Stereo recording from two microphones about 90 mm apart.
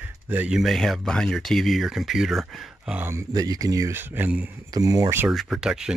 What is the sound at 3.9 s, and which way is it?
Speech, 25° right (ahead or behind).